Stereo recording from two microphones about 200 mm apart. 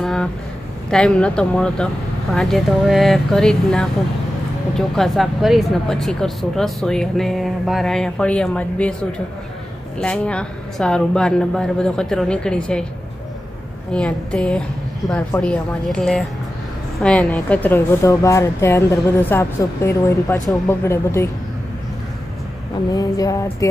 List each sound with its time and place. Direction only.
0.0 s a sound: 5° left (ahead or behind)
0.8 s speech: 5° left (ahead or behind)
9.9 s speech: 5° left (ahead or behind)
13.9 s speech: 5° left (ahead or behind)
22.9 s speech: 15° left (ahead or behind)